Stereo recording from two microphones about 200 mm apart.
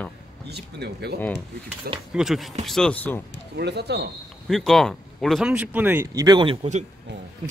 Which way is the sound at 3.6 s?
55° right (ahead or behind).